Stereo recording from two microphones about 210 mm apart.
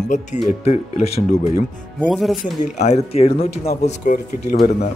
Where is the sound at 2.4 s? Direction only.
30° left (ahead or behind).